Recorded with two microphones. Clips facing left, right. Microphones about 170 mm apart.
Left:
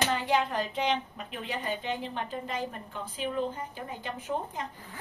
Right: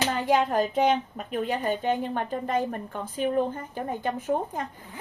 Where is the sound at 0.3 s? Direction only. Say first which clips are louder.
Right 5 dB; 45° right (ahead or behind).